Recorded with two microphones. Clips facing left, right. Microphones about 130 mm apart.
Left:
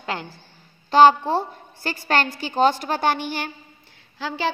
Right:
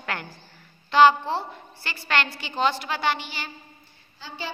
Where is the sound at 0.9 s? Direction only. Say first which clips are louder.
Left 3 dB; 40° left (ahead or behind).